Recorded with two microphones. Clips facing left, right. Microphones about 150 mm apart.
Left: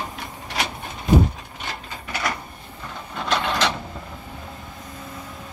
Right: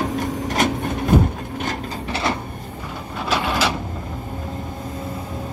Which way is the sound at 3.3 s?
5° right (ahead or behind).